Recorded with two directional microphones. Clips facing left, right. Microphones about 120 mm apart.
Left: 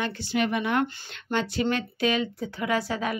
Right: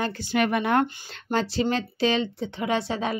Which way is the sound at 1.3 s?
35° right (ahead or behind).